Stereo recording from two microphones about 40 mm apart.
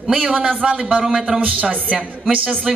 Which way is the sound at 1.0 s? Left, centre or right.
Centre.